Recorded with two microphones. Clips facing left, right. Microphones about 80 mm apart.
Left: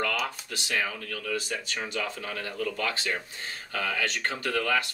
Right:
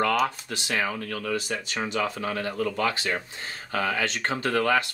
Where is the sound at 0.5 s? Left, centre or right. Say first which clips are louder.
Right 3 dB; right.